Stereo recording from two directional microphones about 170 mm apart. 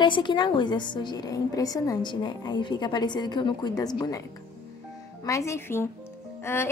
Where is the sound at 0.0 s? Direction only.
25° left (ahead or behind).